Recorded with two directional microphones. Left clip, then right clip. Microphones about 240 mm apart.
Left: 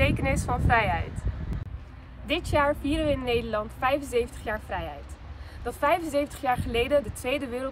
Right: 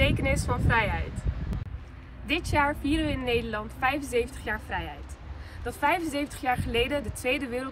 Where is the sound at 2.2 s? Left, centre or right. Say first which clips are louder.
Left 1 dB; centre.